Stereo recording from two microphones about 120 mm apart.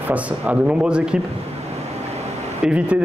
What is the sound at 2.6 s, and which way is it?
Speech, 10° right (ahead or behind).